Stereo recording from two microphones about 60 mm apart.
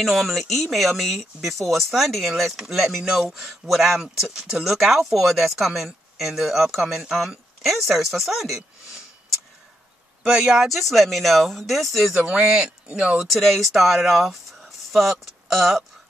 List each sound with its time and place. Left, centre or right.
0.0 s speech: centre
10.2 s speech: centre
12.1 s speech: centre
13.3 s speech: centre